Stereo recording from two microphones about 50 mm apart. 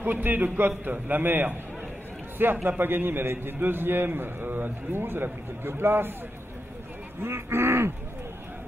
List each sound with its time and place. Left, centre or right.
0.0 s a man's voice: right
7.2 s speech: right